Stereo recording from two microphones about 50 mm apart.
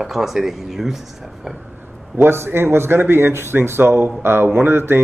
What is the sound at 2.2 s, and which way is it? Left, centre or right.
Speech, right.